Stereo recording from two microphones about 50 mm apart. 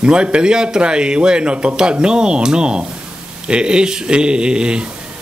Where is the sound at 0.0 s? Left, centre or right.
Right.